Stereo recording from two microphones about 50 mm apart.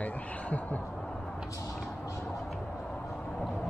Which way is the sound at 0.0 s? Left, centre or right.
Left.